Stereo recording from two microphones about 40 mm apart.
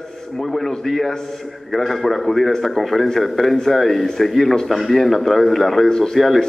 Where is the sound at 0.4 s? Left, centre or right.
Centre.